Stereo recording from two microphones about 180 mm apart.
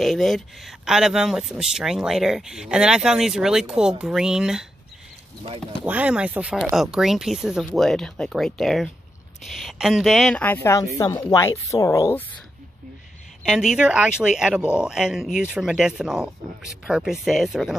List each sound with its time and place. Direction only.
0.0 s speech: centre (ahead or behind)
5.9 s speech: 5° right (ahead or behind); by 12.3 s 15° left (ahead or behind)
13.5 s speech: centre (ahead or behind)